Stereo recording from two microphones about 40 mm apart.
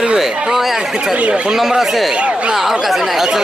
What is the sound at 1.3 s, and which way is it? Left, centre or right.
Speech, right.